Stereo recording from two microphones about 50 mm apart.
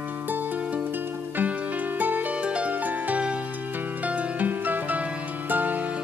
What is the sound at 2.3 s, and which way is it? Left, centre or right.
Harp, right.